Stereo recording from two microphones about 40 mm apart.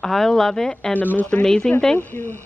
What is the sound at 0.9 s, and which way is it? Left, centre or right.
Speech, left.